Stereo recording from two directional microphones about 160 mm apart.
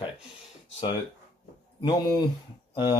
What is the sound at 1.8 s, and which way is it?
Speech, 25° left (ahead or behind).